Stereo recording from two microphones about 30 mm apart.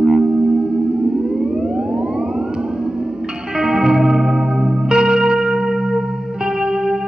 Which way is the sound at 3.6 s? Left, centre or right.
Right.